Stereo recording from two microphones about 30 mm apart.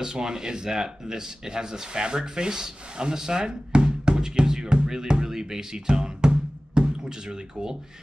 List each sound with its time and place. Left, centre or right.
0.0 s speech: right